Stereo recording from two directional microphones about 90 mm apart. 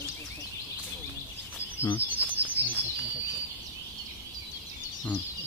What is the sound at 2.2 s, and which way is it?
Bird, 20° right (ahead or behind).